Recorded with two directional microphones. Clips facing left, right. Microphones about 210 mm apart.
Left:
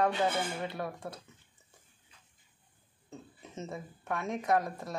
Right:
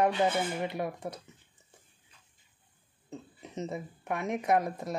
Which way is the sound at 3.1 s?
15° right (ahead or behind).